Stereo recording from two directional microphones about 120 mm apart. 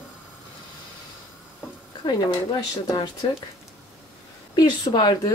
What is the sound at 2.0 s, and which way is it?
Speech, 35° left (ahead or behind).